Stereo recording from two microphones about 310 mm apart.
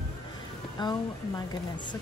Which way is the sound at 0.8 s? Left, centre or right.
Centre.